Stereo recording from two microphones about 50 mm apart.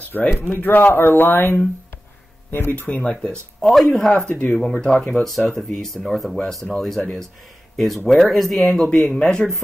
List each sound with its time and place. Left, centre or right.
0.1 s speech: left
2.7 s speech: left
3.0 s speech: centre
3.6 s speech: centre
4.1 s speech: centre
4.5 s speech: centre
8.8 s speech: centre